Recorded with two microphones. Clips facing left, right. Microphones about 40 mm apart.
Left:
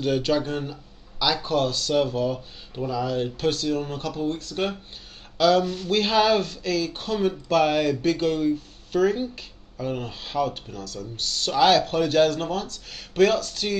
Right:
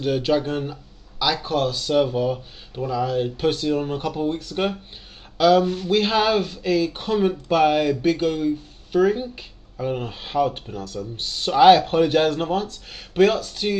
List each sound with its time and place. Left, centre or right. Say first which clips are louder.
0.0 s speech: right 2 dB; centre
1.2 s speech: right 1 dB; centre
3.4 s speech: right 3 dB; right
13.1 s speech: right 2 dB; centre